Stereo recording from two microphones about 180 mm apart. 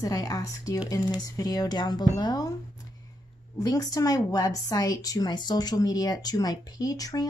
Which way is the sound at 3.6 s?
20° left (ahead or behind).